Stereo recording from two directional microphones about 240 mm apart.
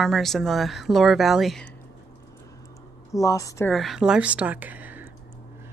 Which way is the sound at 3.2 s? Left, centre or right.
Centre.